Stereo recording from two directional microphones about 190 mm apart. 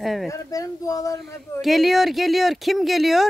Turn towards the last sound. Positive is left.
turn(degrees=0)  # may be behind; listen again after turning